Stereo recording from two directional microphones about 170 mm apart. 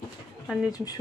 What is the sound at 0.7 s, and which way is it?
Speech, 20° left (ahead or behind).